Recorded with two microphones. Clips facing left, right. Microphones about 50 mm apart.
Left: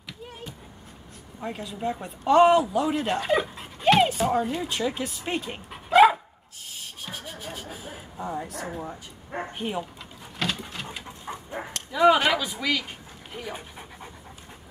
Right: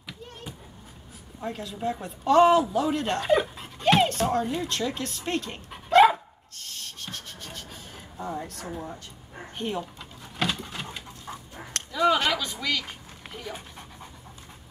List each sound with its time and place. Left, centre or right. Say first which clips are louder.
1.4 s a woman's voice: even; centre
6.6 s a sound: even; centre
9.6 s speech: right 2 dB; centre
10.3 s pigeon: right 1 dB; centre
11.3 s dog: left 3 dB; left
11.9 s a sound: left 4 dB; centre